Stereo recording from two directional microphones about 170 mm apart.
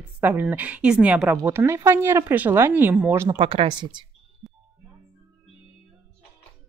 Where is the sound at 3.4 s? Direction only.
30° right (ahead or behind).